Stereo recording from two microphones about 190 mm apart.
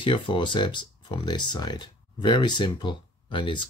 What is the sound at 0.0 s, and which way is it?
Speech, 25° left (ahead or behind).